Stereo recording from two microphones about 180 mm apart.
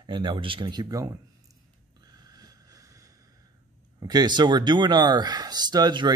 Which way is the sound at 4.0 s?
20° right (ahead or behind).